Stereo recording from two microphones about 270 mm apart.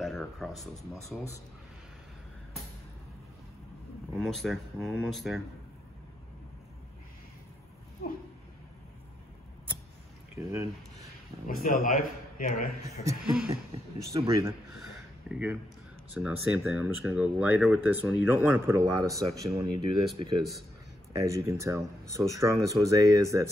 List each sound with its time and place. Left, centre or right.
0.0 s a sound: centre
4.2 s speech: centre
10.3 s speech: centre
11.0 s a man's voice: left
13.2 s speech: centre
14.7 s a sound: centre
16.2 s speech: centre